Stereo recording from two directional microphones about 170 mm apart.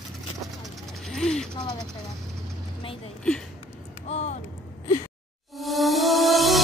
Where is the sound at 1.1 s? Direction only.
5° left (ahead or behind).